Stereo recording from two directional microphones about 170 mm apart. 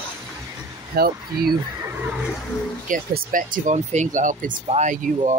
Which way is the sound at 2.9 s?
50° right (ahead or behind).